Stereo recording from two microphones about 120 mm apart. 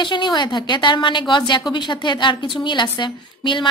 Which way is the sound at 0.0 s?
40° left (ahead or behind).